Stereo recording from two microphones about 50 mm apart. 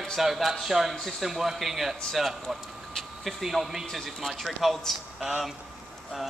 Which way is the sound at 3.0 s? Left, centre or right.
Centre.